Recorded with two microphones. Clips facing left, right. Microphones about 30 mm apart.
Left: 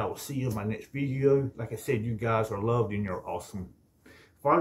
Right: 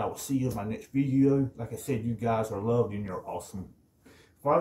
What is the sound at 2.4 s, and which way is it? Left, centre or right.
Speech, left.